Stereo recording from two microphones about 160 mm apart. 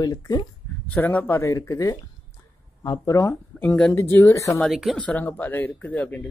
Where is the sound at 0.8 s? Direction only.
10° left (ahead or behind).